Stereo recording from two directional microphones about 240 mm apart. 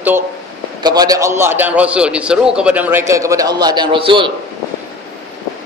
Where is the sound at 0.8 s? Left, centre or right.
Centre.